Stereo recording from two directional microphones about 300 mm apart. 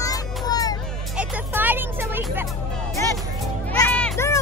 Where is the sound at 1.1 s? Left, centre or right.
Centre.